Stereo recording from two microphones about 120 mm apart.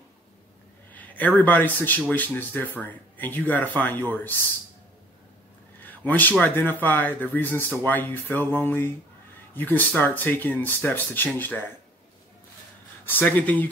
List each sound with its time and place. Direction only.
0.9 s speech: 15° left (ahead or behind)
5.8 s speech: 15° left (ahead or behind)
13.0 s speech: 15° left (ahead or behind)